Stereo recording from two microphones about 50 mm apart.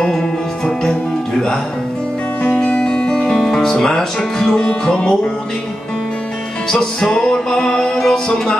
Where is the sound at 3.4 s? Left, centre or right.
Centre.